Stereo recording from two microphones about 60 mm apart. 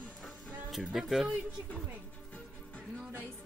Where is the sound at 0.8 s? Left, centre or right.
Centre.